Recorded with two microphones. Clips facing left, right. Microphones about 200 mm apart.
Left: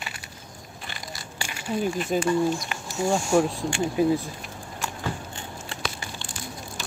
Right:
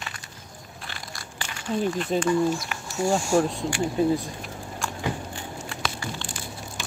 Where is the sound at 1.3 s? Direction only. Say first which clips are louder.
Right 1 dB; 10° left (ahead or behind).